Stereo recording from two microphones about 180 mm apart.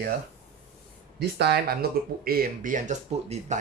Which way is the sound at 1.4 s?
60° right (ahead or behind).